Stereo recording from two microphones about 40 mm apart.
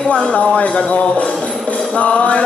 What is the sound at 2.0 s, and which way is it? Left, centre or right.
Music, left.